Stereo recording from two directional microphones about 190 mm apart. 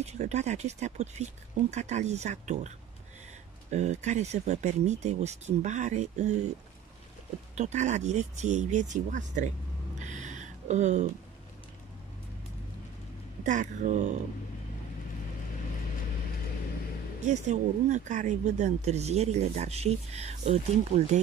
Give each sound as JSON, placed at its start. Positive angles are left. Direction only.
{"t": 0.0, "sound": "speech", "side_deg": -35}
{"t": 3.7, "sound": "speech", "side_deg": -35}
{"t": 7.5, "sound": "speech", "side_deg": -35}
{"t": 9.9, "sound": "music", "side_deg": -40}
{"t": 13.4, "sound": "speech", "side_deg": -40}
{"t": 17.2, "sound": "speech", "side_deg": -35}